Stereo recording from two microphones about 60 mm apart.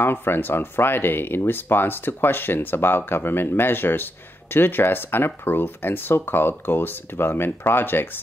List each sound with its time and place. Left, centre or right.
0.0 s speech: left